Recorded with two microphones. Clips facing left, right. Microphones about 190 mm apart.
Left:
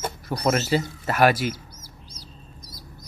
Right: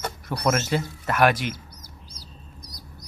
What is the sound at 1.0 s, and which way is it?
Speech, 5° left (ahead or behind).